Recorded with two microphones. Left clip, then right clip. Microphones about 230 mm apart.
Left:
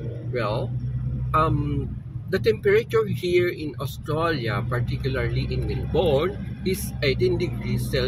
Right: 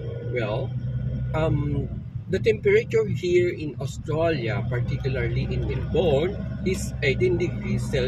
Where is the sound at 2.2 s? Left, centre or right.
Left.